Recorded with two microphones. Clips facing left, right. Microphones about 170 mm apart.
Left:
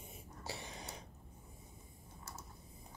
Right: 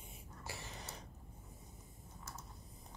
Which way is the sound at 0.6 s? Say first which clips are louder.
Left 2 dB; 15° left (ahead or behind).